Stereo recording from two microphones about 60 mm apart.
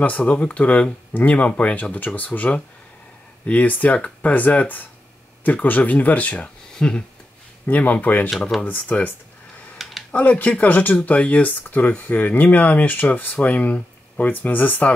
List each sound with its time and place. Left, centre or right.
0.0 s speech: left
8.3 s speech: centre
8.6 s speech: left
9.8 s a sound: centre
10.1 s speech: left